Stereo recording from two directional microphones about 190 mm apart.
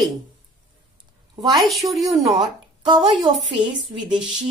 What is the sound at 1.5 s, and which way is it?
Speech, centre (ahead or behind).